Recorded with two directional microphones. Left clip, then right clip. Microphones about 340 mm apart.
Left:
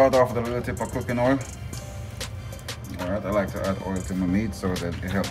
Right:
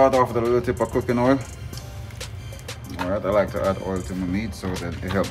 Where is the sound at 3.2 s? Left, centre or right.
Centre.